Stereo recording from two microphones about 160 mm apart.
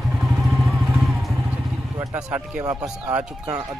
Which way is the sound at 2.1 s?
10° right (ahead or behind).